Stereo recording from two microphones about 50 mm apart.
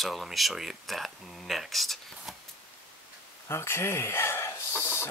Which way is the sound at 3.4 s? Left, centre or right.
Left.